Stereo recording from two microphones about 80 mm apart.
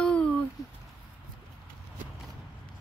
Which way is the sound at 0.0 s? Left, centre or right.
Centre.